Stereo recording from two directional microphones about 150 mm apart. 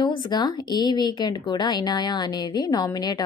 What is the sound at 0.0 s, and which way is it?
A woman's voice, 30° left (ahead or behind).